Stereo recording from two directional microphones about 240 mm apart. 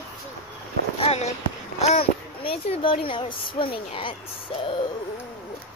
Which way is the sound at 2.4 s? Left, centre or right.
Left.